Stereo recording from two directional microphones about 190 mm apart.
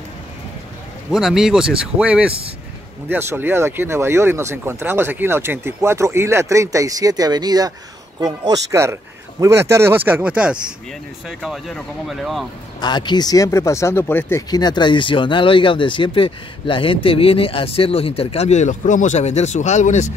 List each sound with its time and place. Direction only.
1.1 s speech: centre (ahead or behind)
12.8 s speech: 25° left (ahead or behind); by 20.1 s 40° left (ahead or behind)